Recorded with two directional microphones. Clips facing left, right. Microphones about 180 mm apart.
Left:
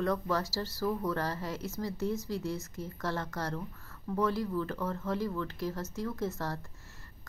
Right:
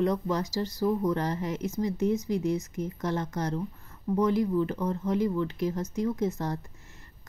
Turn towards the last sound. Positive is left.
turn(degrees=-20)  # may be behind; listen again after turning